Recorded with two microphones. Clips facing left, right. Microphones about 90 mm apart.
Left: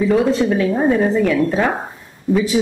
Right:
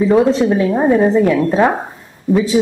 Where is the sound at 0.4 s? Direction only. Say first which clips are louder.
Right 2 dB; 25° right (ahead or behind).